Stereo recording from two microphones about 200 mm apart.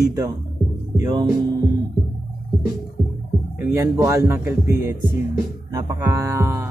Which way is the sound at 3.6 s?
15° right (ahead or behind).